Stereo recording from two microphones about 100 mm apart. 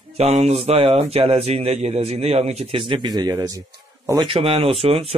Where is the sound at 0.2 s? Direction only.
90° right; by 3.1 s 60° right (ahead or behind).